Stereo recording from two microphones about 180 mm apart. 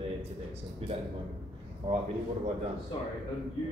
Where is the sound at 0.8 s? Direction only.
35° right (ahead or behind).